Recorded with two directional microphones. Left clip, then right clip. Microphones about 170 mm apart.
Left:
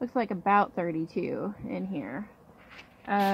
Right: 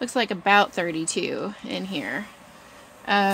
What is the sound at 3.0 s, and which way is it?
Speech, 35° right (ahead or behind).